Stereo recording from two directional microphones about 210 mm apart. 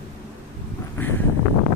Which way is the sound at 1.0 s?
10° left (ahead or behind).